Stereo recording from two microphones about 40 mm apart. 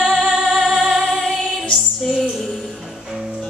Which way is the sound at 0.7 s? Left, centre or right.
Centre.